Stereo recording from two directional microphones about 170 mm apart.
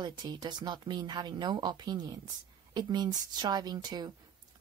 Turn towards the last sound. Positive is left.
turn(degrees=-25)  # may be behind; listen again after turning